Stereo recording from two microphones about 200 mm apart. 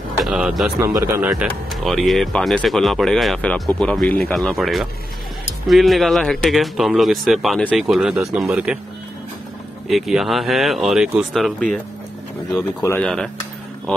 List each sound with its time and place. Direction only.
0.2 s speech: 5° right (ahead or behind)
0.7 s speech: 15° right (ahead or behind)
9.8 s speech: centre (ahead or behind)
12.8 s speech: 5° left (ahead or behind)